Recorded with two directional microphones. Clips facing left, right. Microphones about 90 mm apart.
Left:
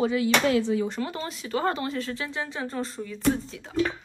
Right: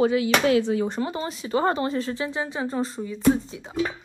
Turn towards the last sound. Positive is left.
turn(degrees=-10)  # may be behind; listen again after turning